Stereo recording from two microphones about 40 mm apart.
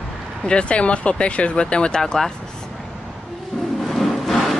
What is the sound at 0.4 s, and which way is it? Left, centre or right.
Speech, left.